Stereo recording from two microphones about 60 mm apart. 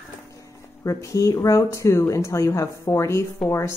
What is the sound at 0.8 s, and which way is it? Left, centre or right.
A woman's voice, left.